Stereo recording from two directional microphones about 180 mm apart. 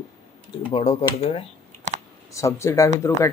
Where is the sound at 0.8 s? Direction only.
35° left (ahead or behind).